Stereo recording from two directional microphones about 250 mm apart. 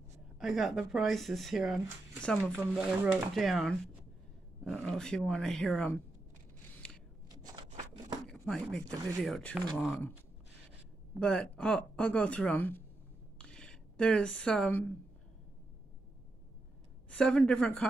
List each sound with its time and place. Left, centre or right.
0.4 s speech: centre
6.8 s scissors: centre
7.2 s a sound: centre
8.3 s speech: centre
11.1 s speech: centre
17.1 s speech: centre